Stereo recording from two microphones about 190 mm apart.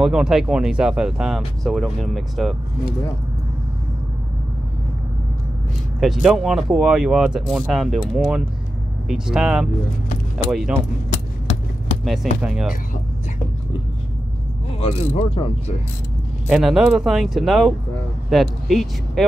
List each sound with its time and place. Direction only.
0.0 s speech: 5° right (ahead or behind)
5.9 s speech: centre (ahead or behind)
12.0 s speech: centre (ahead or behind)
14.7 s mechanisms: 30° left (ahead or behind)
16.4 s speech: centre (ahead or behind)